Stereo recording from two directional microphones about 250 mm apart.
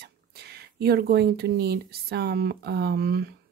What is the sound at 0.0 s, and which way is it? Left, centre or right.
Speech, right.